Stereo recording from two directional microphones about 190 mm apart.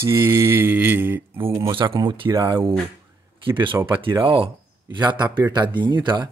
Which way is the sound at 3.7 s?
10° right (ahead or behind).